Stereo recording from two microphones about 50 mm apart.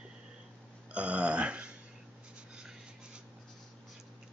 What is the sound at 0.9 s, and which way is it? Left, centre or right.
Burping, right.